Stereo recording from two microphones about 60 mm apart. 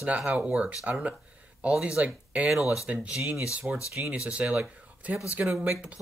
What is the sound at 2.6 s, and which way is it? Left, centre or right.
Speech, left.